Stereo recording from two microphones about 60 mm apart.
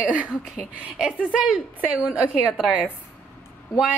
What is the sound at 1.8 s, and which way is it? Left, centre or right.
Speech, right.